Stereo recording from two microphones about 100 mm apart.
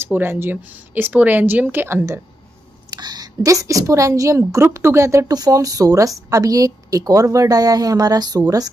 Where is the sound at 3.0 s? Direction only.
40° right (ahead or behind).